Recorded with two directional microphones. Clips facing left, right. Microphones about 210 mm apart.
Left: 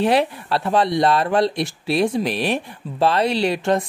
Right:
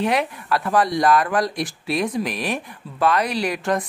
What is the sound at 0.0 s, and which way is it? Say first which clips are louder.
Speech: left 4 dB; 30° left (ahead or behind).